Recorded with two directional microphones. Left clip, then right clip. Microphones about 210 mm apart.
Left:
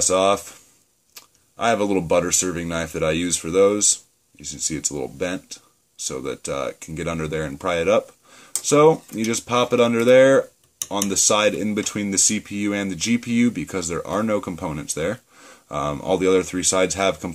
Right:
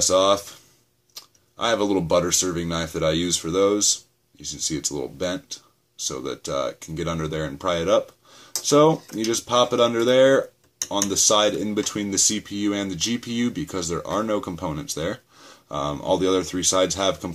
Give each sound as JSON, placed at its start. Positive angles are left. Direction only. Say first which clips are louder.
{"t": 0.1, "sound": "speech", "louder": "even", "side_deg": 35}